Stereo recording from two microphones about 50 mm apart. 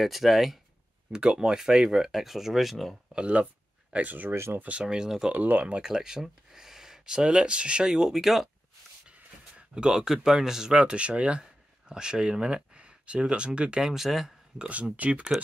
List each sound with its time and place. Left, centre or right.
0.0 s speech: centre
1.1 s speech: centre
3.2 s speech: right
4.3 s speech: right
4.8 s speech: centre
5.3 s speech: right
5.8 s speech: centre
9.6 s a sound: centre
9.9 s speech: centre
14.6 s speech: right